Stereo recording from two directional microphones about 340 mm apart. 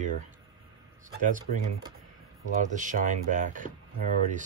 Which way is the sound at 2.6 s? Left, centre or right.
Right.